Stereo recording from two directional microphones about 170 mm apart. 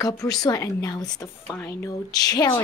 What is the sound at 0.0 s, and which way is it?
A woman's voice, 20° left (ahead or behind).